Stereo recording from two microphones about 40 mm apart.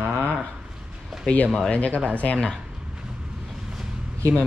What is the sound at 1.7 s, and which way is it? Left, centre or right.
Speech, left.